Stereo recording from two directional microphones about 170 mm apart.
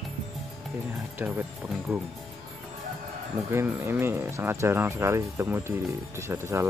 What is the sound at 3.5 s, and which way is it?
Speech, 15° right (ahead or behind).